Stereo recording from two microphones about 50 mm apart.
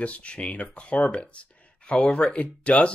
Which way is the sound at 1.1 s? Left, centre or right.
Left.